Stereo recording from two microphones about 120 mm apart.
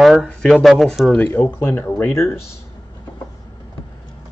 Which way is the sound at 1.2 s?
15° left (ahead or behind).